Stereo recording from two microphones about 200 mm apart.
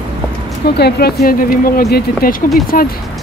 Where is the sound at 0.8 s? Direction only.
50° left (ahead or behind).